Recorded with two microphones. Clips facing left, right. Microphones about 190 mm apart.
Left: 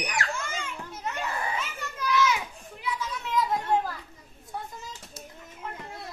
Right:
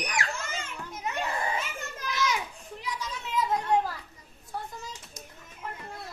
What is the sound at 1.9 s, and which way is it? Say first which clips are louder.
Children playing: left 11 dB; 40° right (ahead or behind).